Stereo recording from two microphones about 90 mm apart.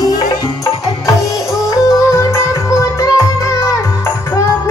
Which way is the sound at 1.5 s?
35° left (ahead or behind).